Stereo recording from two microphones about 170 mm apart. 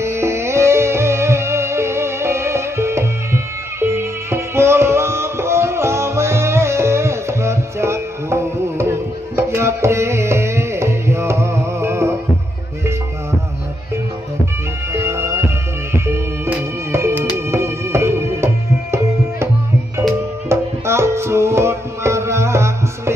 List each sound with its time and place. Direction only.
0.0 s music: 15° right (ahead or behind)
14.9 s music: 15° right (ahead or behind)
17.5 s tabla: 15° right (ahead or behind)
20.4 s music: 15° right (ahead or behind)